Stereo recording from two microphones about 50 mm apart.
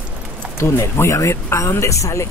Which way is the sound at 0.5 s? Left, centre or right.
Left.